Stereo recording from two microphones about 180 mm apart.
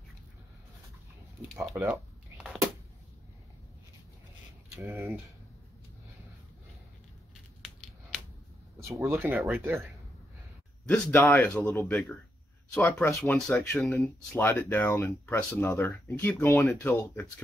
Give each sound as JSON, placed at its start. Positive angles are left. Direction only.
{"t": 1.5, "sound": "speech", "side_deg": 0}
{"t": 1.8, "sound": "a sound", "side_deg": -10}
{"t": 4.7, "sound": "speech", "side_deg": -15}
{"t": 7.6, "sound": "a sound", "side_deg": 5}
{"t": 8.8, "sound": "speech", "side_deg": -15}
{"t": 10.9, "sound": "speech", "side_deg": 10}